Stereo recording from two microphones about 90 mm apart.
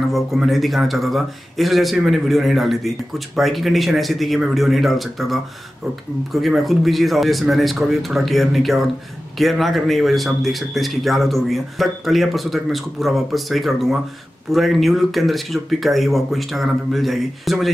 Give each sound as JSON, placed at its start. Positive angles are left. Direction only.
{"t": 0.1, "sound": "a man's voice", "side_deg": 0}